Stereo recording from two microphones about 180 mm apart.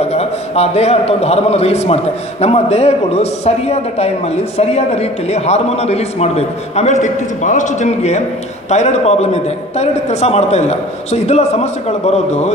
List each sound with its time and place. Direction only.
0.0 s a man's voice: 35° left (ahead or behind)